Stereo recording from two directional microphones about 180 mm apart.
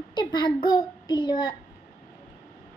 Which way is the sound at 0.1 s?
25° left (ahead or behind).